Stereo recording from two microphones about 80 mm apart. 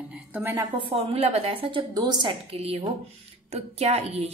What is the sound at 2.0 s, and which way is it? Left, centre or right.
Speech, right.